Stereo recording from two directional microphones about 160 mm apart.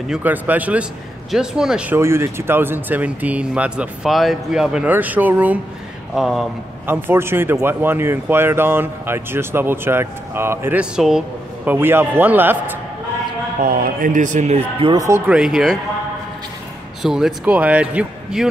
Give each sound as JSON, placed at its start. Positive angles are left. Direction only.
{"t": 0.1, "sound": "speech", "side_deg": -10}
{"t": 2.0, "sound": "speech", "side_deg": -15}
{"t": 6.9, "sound": "speech", "side_deg": -15}
{"t": 13.6, "sound": "speech", "side_deg": -65}
{"t": 15.0, "sound": "speech", "side_deg": -15}
{"t": 15.3, "sound": "speech", "side_deg": -5}
{"t": 17.0, "sound": "speech", "side_deg": -5}